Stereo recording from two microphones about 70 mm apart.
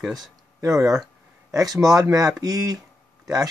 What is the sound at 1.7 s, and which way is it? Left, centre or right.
Speech, centre.